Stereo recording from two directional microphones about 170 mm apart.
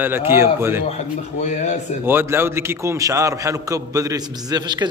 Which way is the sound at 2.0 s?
15° right (ahead or behind).